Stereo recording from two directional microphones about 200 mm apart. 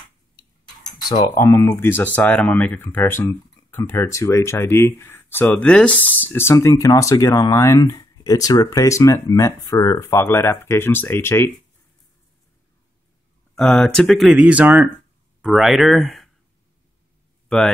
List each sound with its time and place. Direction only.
1.0 s speech: 20° left (ahead or behind)
13.6 s speech: 5° left (ahead or behind)
17.5 s speech: centre (ahead or behind)